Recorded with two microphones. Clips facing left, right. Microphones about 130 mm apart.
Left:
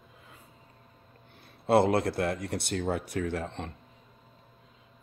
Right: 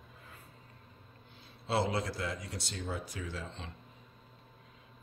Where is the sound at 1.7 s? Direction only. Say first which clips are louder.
Left 9 dB; 60° left (ahead or behind).